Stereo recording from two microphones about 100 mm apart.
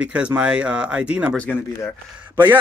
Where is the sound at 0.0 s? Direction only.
10° right (ahead or behind).